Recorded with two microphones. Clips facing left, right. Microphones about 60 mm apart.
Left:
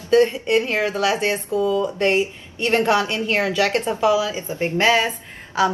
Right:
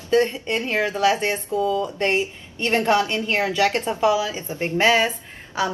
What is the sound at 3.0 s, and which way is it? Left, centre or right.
A woman's voice, right.